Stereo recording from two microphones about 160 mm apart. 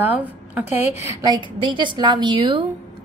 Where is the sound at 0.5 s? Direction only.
15° right (ahead or behind).